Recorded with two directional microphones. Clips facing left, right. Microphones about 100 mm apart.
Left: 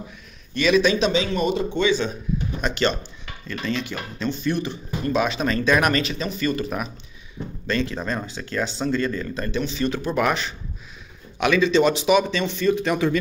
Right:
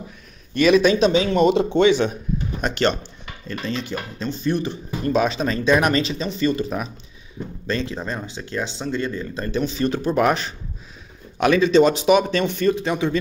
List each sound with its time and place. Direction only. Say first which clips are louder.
0.6 s a man's voice: right 3 dB; 45° right (ahead or behind)
1.3 s speech: right 6 dB; 85° right
1.8 s speech: right 5 dB; 70° right (ahead or behind)
2.6 s a man's voice: right 3 dB; 55° right (ahead or behind)
3.4 s speech: even; 35° right (ahead or behind)
9.5 s speech: right 3 dB; 40° right (ahead or behind)
12.7 s speech: left 1 dB; 25° right (ahead or behind)